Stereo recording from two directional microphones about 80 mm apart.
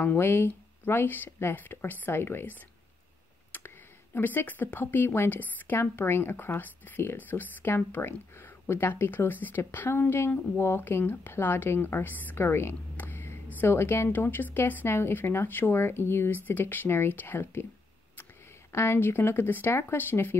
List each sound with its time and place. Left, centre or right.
0.0 s speech: left
18.7 s speech: left